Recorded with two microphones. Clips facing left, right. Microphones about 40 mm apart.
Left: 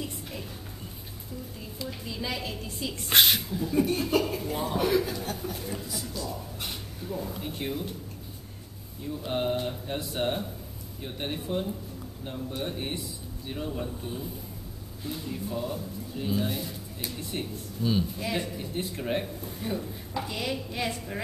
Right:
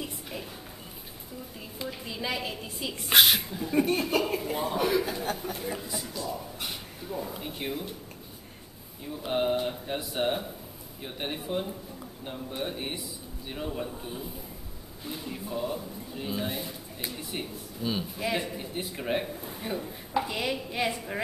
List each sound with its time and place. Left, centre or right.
0.0 s a sound: centre
2.0 s a man's voice: centre
3.4 s a man's voice: centre
5.1 s speech: right
5.4 s a man's voice: centre
9.0 s a man's voice: centre